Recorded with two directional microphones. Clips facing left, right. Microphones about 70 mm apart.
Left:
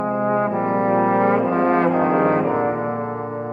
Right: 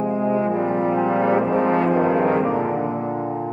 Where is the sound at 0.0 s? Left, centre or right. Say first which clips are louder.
Left 1 dB; left.